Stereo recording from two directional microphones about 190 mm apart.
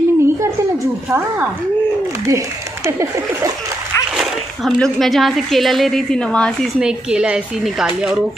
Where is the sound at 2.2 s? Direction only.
15° right (ahead or behind).